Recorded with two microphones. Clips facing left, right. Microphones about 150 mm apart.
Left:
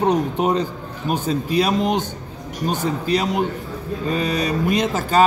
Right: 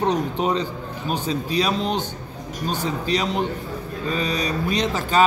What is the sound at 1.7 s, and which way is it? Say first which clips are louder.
Speech: left 4 dB; 15° left (ahead or behind).